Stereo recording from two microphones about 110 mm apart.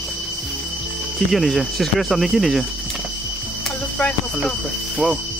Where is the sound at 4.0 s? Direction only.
5° left (ahead or behind).